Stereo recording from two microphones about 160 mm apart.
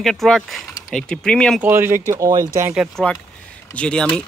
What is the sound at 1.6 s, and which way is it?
Speech, 15° right (ahead or behind).